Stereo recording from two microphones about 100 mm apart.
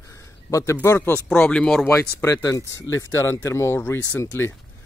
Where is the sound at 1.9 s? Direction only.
30° left (ahead or behind).